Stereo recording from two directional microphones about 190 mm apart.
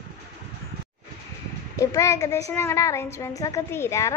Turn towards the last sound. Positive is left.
turn(degrees=15)  # may be behind; listen again after turning